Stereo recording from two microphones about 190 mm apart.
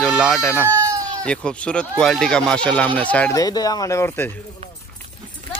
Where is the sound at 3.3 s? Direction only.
20° left (ahead or behind).